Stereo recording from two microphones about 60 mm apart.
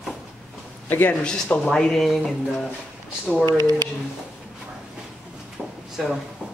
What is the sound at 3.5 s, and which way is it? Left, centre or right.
Speech, right.